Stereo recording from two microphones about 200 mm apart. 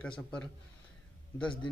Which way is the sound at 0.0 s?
5° left (ahead or behind).